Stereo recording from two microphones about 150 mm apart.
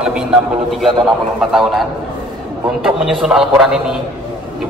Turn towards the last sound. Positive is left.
turn(degrees=-5)  # may be behind; listen again after turning